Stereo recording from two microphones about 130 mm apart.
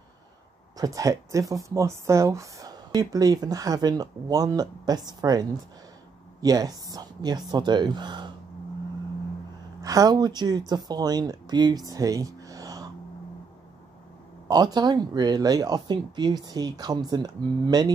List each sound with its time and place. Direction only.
0.7 s a woman's voice: 25° right (ahead or behind)
9.8 s a woman's voice: 25° right (ahead or behind)
14.5 s speech: 35° right (ahead or behind)